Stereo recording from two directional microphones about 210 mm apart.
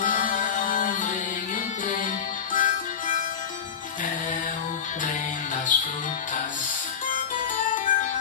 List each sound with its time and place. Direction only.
0.0 s music: 40° left (ahead or behind)
2.5 s music: 40° left (ahead or behind)
5.7 s music: 40° left (ahead or behind)
7.1 s music: 40° left (ahead or behind)